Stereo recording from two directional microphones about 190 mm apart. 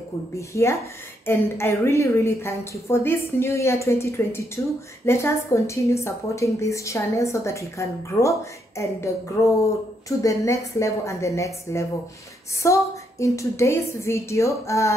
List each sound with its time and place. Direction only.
0.4 s a woman's voice: 15° left (ahead or behind)